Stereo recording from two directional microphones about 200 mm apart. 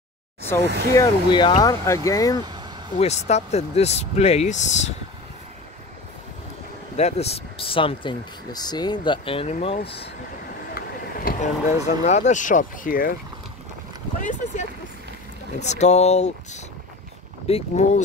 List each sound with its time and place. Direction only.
0.6 s speech: 55° right (ahead or behind)
0.9 s speech: 25° left (ahead or behind)
3.0 s speech: 35° left (ahead or behind)
7.0 s speech: 30° left (ahead or behind)
10.7 s a sound: 45° left (ahead or behind)
12.0 s speech: 35° left (ahead or behind)
14.2 s speech: 35° left (ahead or behind)